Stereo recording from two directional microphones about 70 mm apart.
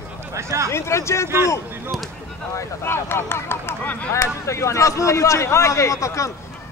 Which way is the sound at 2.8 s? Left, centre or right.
Left.